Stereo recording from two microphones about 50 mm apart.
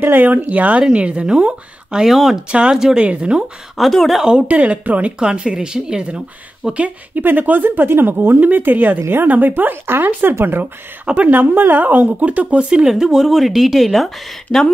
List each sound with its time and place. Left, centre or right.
0.0 s speech: right; by 2.0 s centre
2.0 s speech: centre
2.5 s a woman's voice: right
3.7 s speech: centre
4.2 s a woman's voice: centre
7.2 s a woman's voice: right; by 14.6 s centre